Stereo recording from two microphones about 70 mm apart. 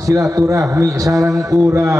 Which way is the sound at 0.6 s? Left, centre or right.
Right.